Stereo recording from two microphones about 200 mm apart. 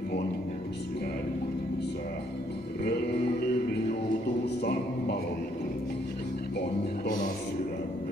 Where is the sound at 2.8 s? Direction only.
55° left (ahead or behind).